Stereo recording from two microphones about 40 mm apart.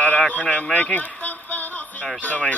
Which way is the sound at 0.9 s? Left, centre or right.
Left.